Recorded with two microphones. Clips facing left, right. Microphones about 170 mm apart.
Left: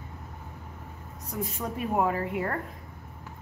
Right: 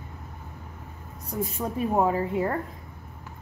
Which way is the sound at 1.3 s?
30° right (ahead or behind).